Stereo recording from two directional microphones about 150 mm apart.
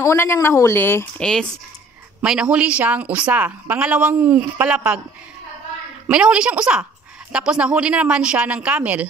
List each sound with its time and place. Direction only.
0.0 s speech: 15° left (ahead or behind); by 5.0 s 5° right (ahead or behind)
6.0 s speech: 5° right (ahead or behind)